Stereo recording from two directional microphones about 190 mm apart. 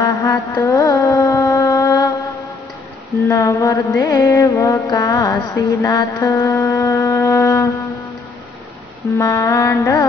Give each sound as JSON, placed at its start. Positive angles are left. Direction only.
{"t": 0.0, "sound": "a sound", "side_deg": 15}
{"t": 3.1, "sound": "music", "side_deg": 15}
{"t": 9.2, "sound": "carnatic music", "side_deg": 15}